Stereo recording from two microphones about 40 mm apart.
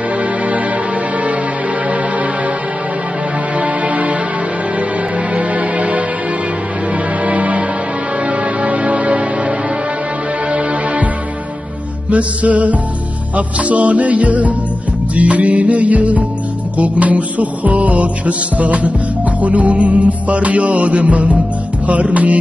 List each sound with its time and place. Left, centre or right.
3.5 s music: right
5.3 s music: right
7.2 s music: right
12.1 s music: right